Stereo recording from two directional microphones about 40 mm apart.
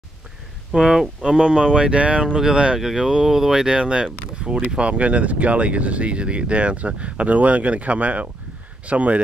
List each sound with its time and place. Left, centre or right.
0.7 s speech: centre
1.4 s speech: right